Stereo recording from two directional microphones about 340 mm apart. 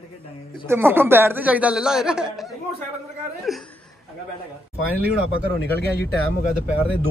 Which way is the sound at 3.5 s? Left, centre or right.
Centre.